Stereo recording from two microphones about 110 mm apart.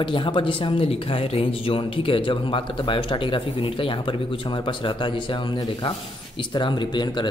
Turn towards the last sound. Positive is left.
turn(degrees=45)  # may be behind; listen again after turning